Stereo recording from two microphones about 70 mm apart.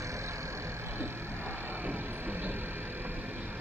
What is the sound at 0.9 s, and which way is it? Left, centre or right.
Vehicle, right.